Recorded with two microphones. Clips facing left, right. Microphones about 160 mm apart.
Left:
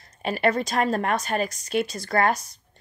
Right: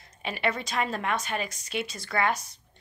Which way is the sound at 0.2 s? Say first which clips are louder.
Left 7 dB; 40° left (ahead or behind).